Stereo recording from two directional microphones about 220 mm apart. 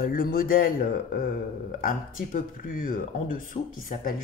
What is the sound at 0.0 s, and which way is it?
Speech, 40° left (ahead or behind).